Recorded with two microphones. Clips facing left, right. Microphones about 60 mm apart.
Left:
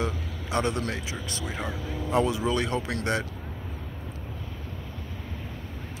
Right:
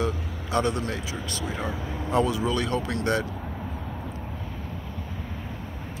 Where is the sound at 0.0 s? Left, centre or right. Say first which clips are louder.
Right 2 dB; left.